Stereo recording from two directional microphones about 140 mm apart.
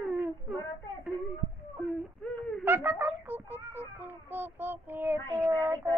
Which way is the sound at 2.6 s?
15° right (ahead or behind).